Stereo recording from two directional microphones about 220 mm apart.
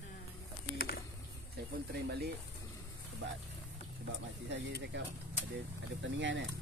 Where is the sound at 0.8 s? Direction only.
45° left (ahead or behind).